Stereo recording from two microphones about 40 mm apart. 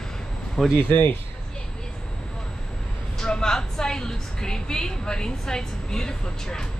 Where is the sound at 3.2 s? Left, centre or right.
Centre.